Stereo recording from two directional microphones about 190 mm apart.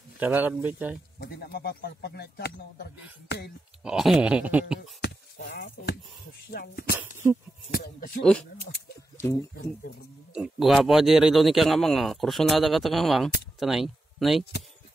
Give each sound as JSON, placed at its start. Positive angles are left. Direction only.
{"t": 0.2, "sound": "speech", "side_deg": -10}
{"t": 1.2, "sound": "speech", "side_deg": 55}
{"t": 3.8, "sound": "a man's voice", "side_deg": 0}
{"t": 4.7, "sound": "a sound", "side_deg": 60}
{"t": 6.5, "sound": "speech", "side_deg": 55}
{"t": 8.2, "sound": "a man's voice", "side_deg": 5}
{"t": 10.3, "sound": "a man's voice", "side_deg": -5}